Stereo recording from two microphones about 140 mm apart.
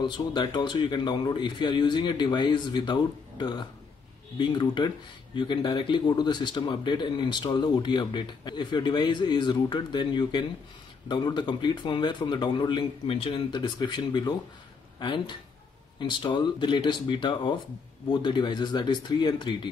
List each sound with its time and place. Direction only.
0.0 s speech: 30° left (ahead or behind)